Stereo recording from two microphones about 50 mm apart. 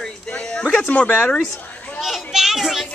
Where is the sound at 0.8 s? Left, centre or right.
Left.